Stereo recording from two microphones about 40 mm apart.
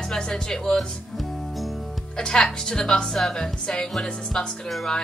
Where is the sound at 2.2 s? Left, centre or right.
Centre.